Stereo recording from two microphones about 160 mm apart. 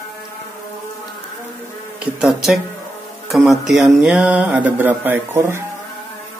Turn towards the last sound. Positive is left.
turn(degrees=-15)  # may be behind; listen again after turning